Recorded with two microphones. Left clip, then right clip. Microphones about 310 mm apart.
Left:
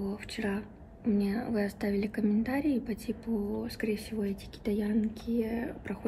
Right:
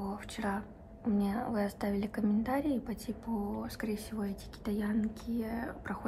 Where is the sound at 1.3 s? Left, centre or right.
Right.